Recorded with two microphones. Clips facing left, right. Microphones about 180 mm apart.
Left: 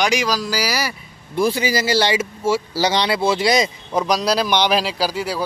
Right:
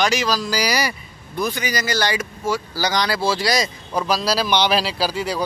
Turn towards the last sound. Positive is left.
turn(degrees=10)  # may be behind; listen again after turning